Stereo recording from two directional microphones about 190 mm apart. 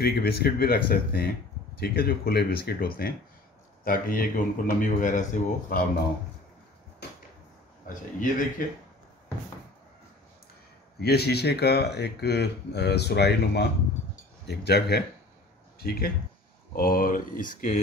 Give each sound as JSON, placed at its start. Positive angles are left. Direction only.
{"t": 0.0, "sound": "speech", "side_deg": 55}
{"t": 7.8, "sound": "speech", "side_deg": 45}
{"t": 11.0, "sound": "speech", "side_deg": 55}